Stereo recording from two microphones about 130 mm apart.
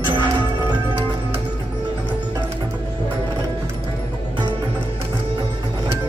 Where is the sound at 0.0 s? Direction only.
35° right (ahead or behind).